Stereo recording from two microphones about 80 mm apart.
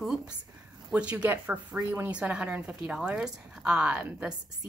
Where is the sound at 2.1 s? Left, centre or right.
Centre.